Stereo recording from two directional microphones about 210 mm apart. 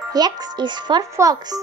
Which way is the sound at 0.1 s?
20° right (ahead or behind).